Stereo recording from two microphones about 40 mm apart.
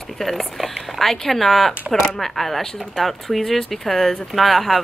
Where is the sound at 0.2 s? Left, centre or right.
Centre.